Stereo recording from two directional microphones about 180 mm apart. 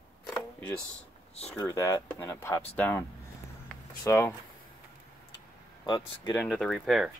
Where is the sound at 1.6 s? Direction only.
15° left (ahead or behind).